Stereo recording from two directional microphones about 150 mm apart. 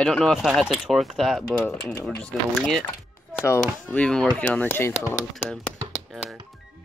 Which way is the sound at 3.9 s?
5° left (ahead or behind).